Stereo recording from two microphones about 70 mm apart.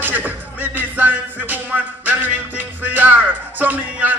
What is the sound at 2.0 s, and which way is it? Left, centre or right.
Music, right.